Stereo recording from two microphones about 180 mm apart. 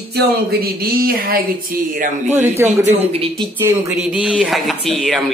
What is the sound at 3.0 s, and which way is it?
Speech, 35° right (ahead or behind).